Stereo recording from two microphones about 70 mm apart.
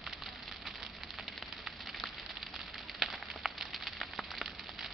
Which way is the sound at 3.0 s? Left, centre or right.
Centre.